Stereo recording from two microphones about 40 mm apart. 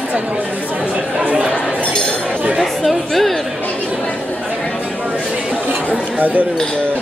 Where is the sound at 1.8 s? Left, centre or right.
Left.